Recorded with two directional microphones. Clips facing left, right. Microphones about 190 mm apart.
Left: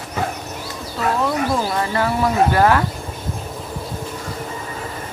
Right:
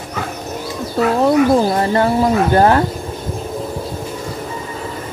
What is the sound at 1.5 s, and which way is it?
Speech, 40° right (ahead or behind).